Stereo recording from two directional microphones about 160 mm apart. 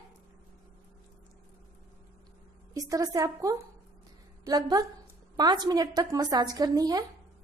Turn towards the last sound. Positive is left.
turn(degrees=-25)  # may be behind; listen again after turning